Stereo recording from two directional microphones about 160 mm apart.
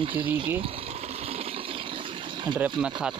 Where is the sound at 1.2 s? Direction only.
35° right (ahead or behind).